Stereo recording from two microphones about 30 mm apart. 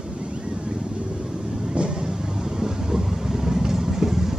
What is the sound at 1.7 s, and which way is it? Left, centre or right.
Vehicle, right.